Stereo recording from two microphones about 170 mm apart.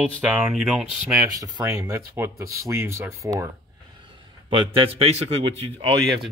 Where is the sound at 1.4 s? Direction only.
20° right (ahead or behind).